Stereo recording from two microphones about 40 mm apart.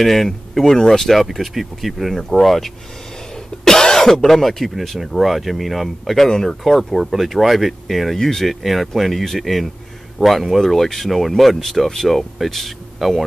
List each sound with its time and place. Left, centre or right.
0.0 s speech: centre
2.1 s speech: centre